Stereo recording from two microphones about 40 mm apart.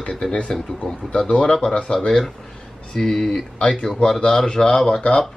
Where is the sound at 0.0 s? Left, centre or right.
Left.